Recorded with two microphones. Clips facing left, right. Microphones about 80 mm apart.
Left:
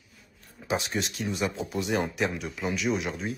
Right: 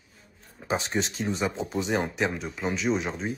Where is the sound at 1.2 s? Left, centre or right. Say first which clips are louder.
Left 1 dB; right.